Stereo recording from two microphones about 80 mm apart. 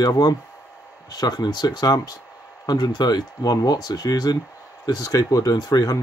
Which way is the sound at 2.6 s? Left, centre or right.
Left.